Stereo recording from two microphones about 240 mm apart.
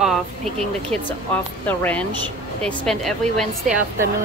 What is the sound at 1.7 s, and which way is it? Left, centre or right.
A woman's voice, centre.